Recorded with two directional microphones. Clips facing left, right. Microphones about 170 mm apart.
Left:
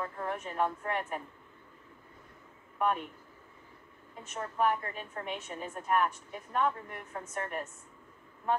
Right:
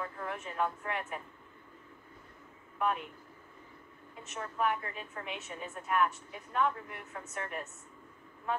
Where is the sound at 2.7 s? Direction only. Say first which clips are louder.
Left 2 dB; 45° left (ahead or behind).